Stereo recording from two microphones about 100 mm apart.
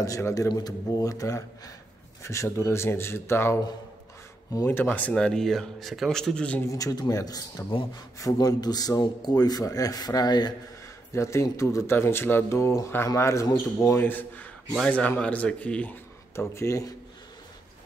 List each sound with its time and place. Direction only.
0.0 s a man's voice: 35° left (ahead or behind)
4.6 s speech: 20° left (ahead or behind)
6.6 s a man's voice: 35° left (ahead or behind)
11.1 s a man's voice: 30° left (ahead or behind); by 16.0 s 15° left (ahead or behind)
16.3 s a man's voice: 30° left (ahead or behind)